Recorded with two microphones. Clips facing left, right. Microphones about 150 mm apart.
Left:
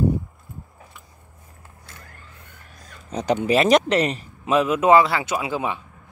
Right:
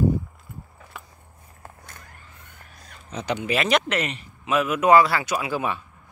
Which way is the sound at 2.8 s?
40° left (ahead or behind).